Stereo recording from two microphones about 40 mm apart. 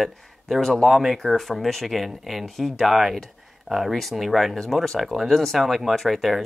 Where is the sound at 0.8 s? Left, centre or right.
Centre.